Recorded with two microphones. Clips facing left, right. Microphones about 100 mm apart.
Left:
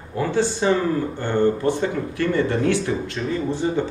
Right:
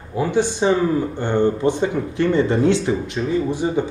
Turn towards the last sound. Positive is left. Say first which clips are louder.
# right 2 dB
turn(degrees=-15)  # may be behind; listen again after turning